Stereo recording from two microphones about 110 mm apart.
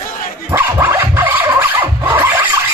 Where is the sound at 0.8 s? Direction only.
20° right (ahead or behind).